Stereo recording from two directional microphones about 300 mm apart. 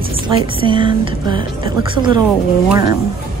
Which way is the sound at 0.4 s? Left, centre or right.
Centre.